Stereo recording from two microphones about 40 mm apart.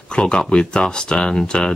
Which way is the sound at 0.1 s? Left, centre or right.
Left.